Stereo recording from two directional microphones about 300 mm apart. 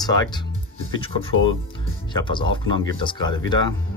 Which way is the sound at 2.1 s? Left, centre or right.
Centre.